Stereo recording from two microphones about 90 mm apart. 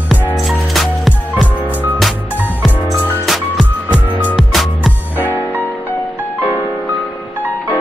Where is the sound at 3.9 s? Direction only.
20° right (ahead or behind).